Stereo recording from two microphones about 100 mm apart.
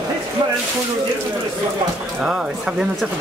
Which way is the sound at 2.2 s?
5° right (ahead or behind).